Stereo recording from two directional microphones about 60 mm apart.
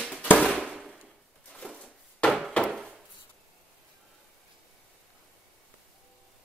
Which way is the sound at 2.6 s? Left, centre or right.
Centre.